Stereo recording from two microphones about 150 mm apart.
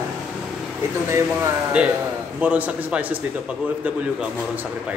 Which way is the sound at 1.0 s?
20° right (ahead or behind).